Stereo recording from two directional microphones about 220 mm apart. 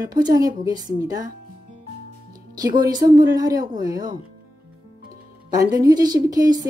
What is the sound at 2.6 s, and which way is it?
Speech, 15° right (ahead or behind).